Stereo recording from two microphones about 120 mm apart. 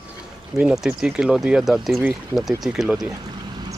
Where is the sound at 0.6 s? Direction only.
5° right (ahead or behind).